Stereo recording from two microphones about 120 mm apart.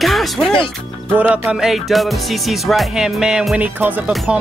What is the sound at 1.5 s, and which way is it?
Music, 5° right (ahead or behind).